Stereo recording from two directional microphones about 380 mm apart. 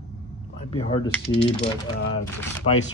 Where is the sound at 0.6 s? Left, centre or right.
Centre.